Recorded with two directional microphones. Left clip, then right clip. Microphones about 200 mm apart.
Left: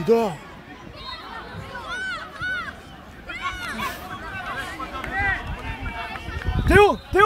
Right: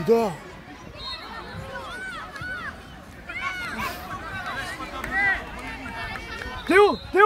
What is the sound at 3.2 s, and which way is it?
Chatter, 30° left (ahead or behind).